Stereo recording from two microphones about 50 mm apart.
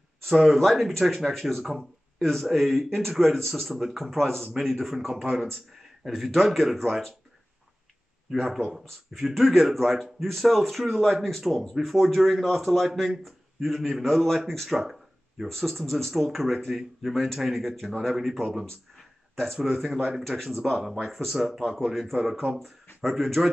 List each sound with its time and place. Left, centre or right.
0.2 s a man's voice: centre
1.6 s a man's voice: centre
2.1 s a man's voice: centre
8.3 s a man's voice: centre
19.3 s speech: centre
19.6 s a man's voice: centre